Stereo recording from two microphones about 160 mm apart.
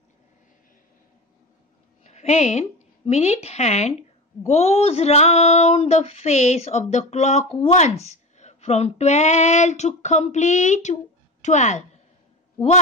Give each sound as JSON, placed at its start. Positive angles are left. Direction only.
{"t": 2.0, "sound": "a woman's voice", "side_deg": 45}